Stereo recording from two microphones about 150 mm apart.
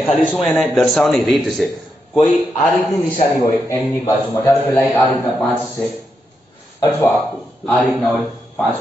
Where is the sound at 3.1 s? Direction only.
65° left (ahead or behind).